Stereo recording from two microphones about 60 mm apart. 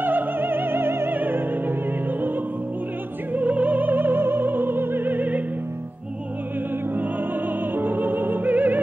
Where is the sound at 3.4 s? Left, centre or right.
Centre; by 4.4 s right.